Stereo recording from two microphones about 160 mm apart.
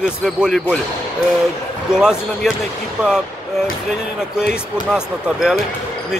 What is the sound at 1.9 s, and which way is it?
Speech, 5° right (ahead or behind).